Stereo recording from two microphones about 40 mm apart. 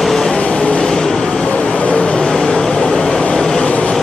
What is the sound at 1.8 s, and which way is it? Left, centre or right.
Vehicle, left.